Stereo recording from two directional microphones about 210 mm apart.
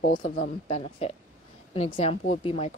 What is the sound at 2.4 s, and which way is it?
Speech, 30° left (ahead or behind).